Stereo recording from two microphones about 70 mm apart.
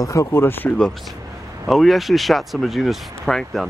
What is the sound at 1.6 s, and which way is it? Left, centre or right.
Speech, centre.